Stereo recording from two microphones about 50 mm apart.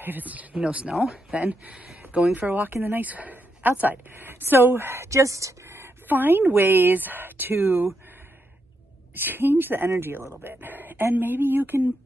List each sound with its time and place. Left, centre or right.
0.0 s speech: right
6.0 s speech: right
9.2 s speech: right
10.3 s speech: right